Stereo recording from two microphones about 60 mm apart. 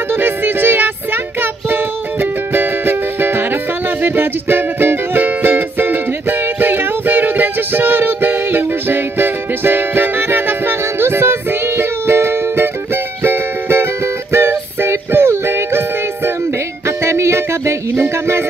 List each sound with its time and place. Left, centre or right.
0.1 s music: right
16.8 s music: right